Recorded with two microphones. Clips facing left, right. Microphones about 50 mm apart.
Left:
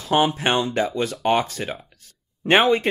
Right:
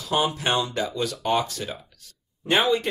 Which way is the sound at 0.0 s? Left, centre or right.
Left.